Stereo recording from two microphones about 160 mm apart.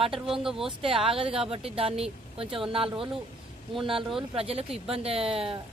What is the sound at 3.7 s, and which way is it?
Speech, 35° right (ahead or behind).